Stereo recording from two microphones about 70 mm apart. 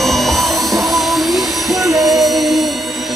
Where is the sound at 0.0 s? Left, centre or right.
Centre.